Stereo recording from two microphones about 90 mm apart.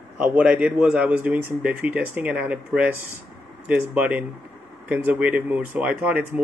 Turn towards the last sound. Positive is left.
turn(degrees=-15)  # may be behind; listen again after turning